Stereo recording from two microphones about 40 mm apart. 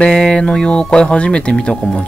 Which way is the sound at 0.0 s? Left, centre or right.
Left.